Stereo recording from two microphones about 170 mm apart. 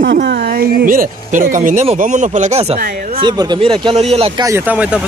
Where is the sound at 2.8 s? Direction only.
65° right (ahead or behind).